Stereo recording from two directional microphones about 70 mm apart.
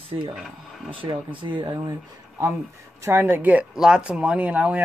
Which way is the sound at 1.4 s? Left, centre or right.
Right.